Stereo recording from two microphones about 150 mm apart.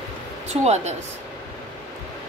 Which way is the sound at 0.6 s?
45° right (ahead or behind).